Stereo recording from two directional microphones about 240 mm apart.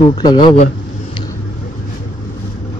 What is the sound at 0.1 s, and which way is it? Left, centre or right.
Speech, centre.